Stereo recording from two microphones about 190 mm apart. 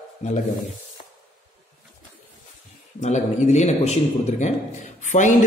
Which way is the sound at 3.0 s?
35° left (ahead or behind).